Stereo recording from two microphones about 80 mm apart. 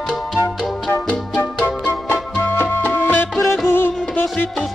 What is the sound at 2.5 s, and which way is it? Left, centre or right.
Music, left.